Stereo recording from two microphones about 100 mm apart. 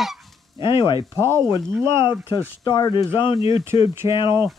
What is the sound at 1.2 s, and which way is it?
Speech, 25° right (ahead or behind).